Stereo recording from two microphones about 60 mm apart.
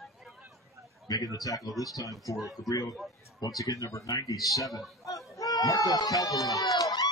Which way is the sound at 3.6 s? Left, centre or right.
Left.